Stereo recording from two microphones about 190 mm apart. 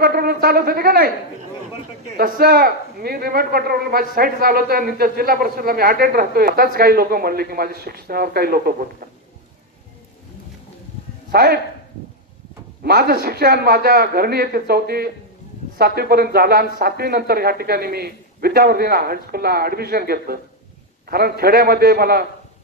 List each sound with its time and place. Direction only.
0.0 s speech: 50° right (ahead or behind)
2.1 s speech: 50° right (ahead or behind)
11.3 s speech: 55° right (ahead or behind)
12.8 s speech: 55° right (ahead or behind)